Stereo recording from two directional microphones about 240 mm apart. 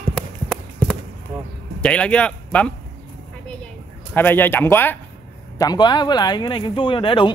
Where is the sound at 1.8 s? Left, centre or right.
Centre.